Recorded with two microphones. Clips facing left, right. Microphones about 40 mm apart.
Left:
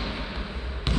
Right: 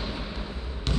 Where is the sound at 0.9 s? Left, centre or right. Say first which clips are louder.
Left 1 dB; centre.